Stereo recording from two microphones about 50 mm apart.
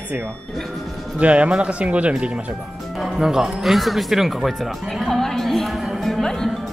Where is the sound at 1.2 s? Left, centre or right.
Right.